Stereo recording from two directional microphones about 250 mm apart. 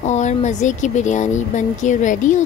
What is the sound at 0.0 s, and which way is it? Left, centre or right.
A woman's voice, left.